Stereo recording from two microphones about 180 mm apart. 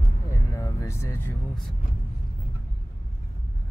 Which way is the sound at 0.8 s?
15° left (ahead or behind).